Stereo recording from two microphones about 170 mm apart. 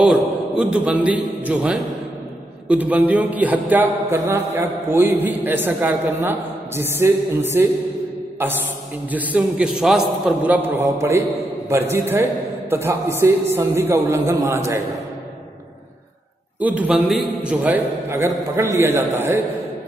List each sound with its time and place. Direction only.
0.0 s a man's voice: 5° right (ahead or behind)
16.5 s a man's voice: 10° right (ahead or behind)